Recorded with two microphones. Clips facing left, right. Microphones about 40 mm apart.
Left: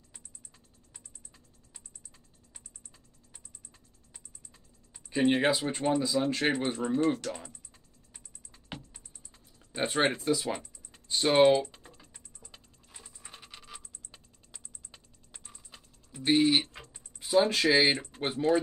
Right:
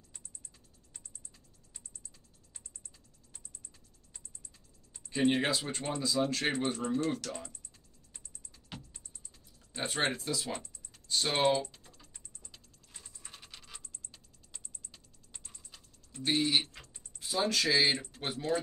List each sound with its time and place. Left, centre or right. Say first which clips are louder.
4.9 s speech: left 3 dB; centre
8.7 s music: left 3 dB; centre
10.9 s typing: left 6 dB; left
11.4 s speech: left 4 dB; centre
11.7 s typing: left 4 dB; left
12.9 s a sound: left 2 dB; centre
13.3 s music: left 3 dB; centre
15.3 s music: left 2 dB; centre
16.1 s typing: left 6 dB; centre
17.7 s speech: left 4 dB; centre
18.1 s speech: left 6 dB; left